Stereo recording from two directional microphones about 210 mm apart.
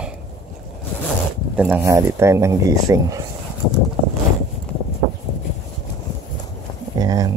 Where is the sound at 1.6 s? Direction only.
10° right (ahead or behind).